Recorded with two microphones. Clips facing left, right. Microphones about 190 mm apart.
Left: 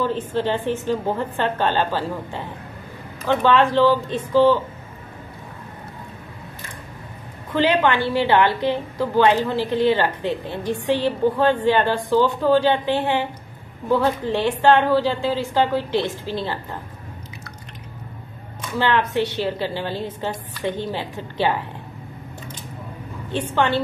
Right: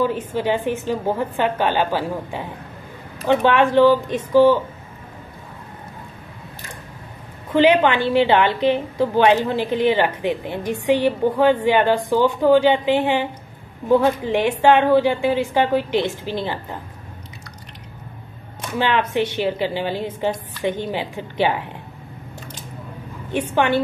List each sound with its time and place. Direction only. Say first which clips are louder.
0.0 s a woman's voice: right 1 dB; 10° right (ahead or behind)
7.5 s a woman's voice: right 4 dB; 15° right (ahead or behind)
18.8 s a woman's voice: even; 15° right (ahead or behind)
23.5 s a woman's voice: right 2 dB; 15° right (ahead or behind)